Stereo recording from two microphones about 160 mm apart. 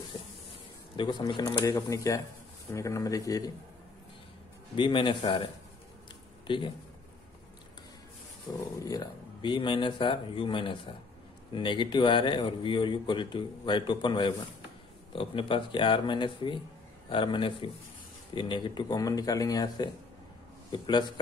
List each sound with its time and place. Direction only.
0.9 s speech: 25° left (ahead or behind)
4.7 s speech: 30° left (ahead or behind)
8.5 s speech: 30° left (ahead or behind)